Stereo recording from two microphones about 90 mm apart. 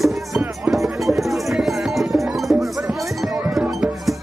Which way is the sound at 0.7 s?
Centre (ahead or behind).